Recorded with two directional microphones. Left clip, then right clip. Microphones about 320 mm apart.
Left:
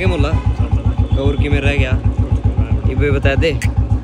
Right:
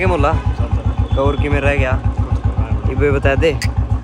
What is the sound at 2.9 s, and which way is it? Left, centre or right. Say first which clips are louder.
Speech: right 2 dB; centre.